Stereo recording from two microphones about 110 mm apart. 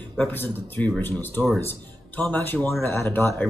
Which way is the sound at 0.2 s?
15° left (ahead or behind).